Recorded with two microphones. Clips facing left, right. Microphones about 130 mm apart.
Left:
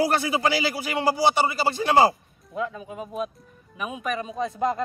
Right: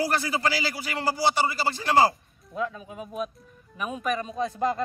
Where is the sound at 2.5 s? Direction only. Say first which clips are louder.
Left 1 dB; centre (ahead or behind).